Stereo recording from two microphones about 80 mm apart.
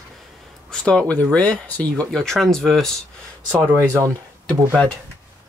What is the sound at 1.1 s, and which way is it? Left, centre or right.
Speech, centre.